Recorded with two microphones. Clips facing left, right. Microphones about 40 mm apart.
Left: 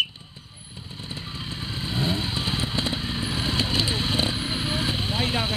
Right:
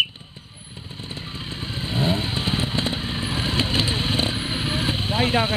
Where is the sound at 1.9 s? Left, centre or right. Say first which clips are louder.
Right 4 dB; centre.